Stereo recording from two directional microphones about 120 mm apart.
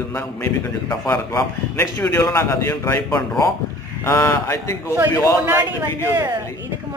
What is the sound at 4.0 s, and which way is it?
Speech, 20° left (ahead or behind).